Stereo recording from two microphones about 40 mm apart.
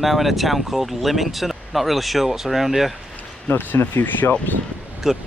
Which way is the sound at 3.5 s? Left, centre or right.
Left.